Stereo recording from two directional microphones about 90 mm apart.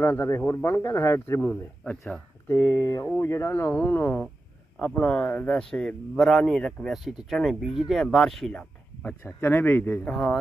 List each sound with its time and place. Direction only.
0.0 s speech: 30° left (ahead or behind); by 8.6 s 5° left (ahead or behind)
9.0 s speech: 25° left (ahead or behind)
10.0 s speech: 5° left (ahead or behind)